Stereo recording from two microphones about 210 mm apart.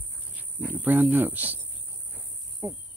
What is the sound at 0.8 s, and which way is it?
Speech, 10° right (ahead or behind).